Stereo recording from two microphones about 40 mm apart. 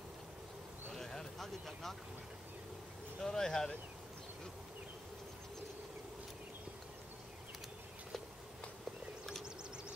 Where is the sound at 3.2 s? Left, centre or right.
Centre.